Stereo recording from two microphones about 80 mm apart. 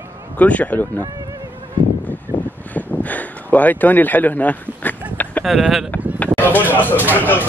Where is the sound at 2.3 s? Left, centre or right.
Right.